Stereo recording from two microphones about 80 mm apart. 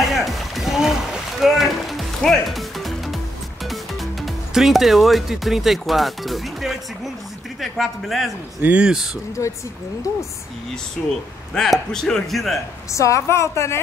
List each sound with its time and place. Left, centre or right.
0.0 s music: centre
4.6 s speech: centre
8.6 s speech: centre
11.5 s speech: centre
12.9 s a woman's voice: left